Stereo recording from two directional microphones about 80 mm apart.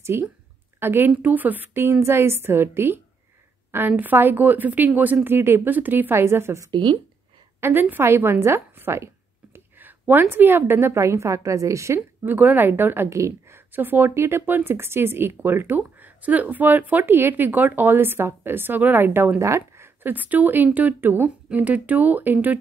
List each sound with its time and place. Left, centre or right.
0.0 s a woman's voice: right
6.7 s speech: right
7.6 s a woman's voice: right
12.3 s speech: right
19.4 s speech: right
20.0 s speech: right